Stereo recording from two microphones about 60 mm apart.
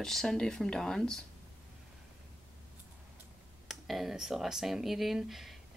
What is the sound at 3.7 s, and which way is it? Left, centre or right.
Speech, centre.